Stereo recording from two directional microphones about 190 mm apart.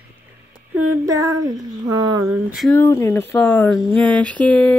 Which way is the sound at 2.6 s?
10° left (ahead or behind).